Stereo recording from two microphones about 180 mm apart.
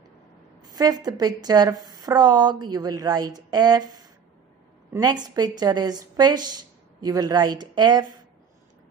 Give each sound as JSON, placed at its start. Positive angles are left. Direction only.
{"t": 0.6, "sound": "a woman's voice", "side_deg": -20}